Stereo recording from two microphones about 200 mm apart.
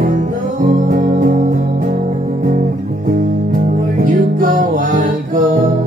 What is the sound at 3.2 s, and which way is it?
Music, 45° right (ahead or behind).